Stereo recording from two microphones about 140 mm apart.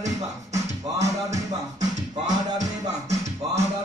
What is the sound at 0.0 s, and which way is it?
Music, 55° right (ahead or behind).